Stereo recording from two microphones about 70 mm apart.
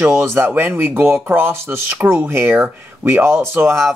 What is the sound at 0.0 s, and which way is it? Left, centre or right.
Speech, right.